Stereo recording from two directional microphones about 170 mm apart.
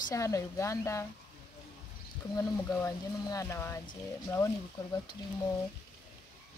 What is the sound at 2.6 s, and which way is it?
Speech, 20° left (ahead or behind).